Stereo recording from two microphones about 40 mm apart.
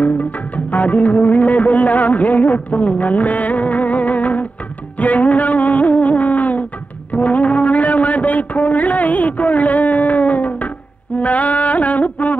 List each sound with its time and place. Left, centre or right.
0.0 s music: left
7.1 s a sound: left
11.1 s music: left